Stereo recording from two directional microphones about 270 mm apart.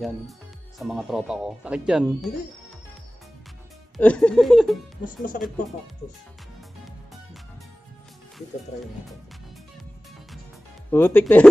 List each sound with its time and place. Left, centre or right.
0.7 s speech: centre
3.9 s speech: centre
5.0 s speech: left
10.9 s speech: centre